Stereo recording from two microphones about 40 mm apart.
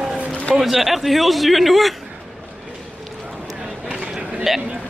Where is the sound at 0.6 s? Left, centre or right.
Centre.